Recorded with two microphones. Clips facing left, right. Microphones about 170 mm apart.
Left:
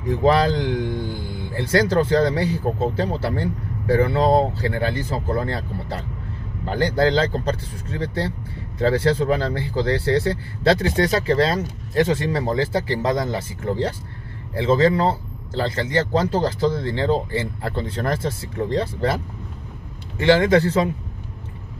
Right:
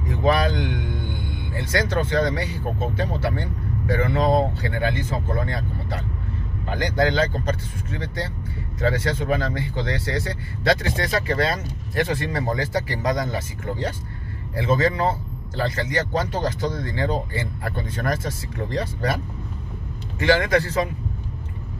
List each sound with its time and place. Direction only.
0.1 s a man's voice: 30° left (ahead or behind)